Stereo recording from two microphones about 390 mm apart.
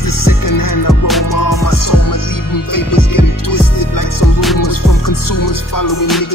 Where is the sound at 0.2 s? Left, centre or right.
Left.